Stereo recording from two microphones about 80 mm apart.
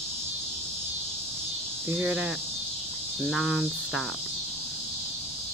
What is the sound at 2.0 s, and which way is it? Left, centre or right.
Speech, centre.